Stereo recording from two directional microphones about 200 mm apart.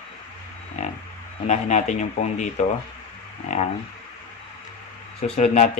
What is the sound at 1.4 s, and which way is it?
Speech, 35° left (ahead or behind).